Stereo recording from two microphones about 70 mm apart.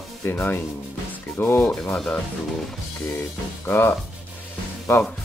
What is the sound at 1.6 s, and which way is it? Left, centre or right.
Speech, centre.